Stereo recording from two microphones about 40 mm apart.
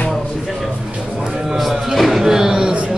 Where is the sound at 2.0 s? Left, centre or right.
Centre.